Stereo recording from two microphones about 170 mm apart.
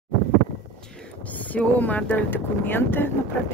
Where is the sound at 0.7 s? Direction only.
5° left (ahead or behind).